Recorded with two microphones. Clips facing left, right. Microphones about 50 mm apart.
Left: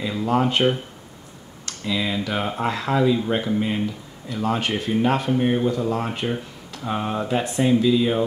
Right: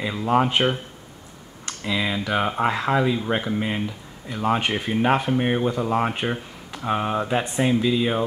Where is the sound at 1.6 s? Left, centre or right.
Centre.